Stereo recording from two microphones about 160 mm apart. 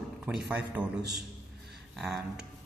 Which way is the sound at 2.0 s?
Centre (ahead or behind).